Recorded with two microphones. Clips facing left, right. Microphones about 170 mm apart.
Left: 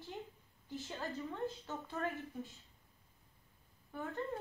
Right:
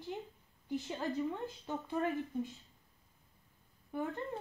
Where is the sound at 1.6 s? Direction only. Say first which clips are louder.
Right 5 dB; 15° right (ahead or behind).